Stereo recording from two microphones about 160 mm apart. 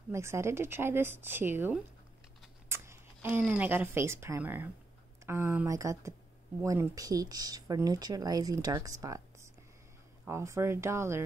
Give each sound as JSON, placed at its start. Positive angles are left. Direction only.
{"t": 0.1, "sound": "speech", "side_deg": -15}